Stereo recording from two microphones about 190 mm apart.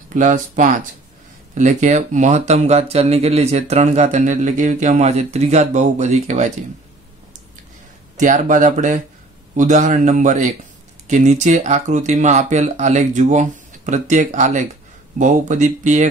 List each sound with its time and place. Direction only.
0.1 s speech: 40° right (ahead or behind)
8.2 s speech: 40° right (ahead or behind)